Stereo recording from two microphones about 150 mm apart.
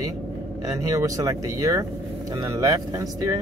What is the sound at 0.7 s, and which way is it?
Speech, 20° right (ahead or behind).